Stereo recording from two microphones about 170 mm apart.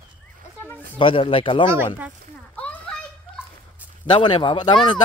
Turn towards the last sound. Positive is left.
turn(degrees=25)  # may be behind; listen again after turning